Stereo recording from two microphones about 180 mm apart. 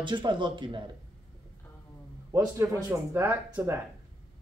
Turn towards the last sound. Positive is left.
turn(degrees=-10)  # may be behind; listen again after turning